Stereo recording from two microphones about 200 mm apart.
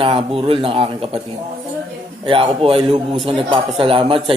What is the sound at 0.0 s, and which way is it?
Speech, 25° right (ahead or behind).